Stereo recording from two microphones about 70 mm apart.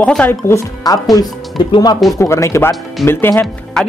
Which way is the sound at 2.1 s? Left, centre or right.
Left.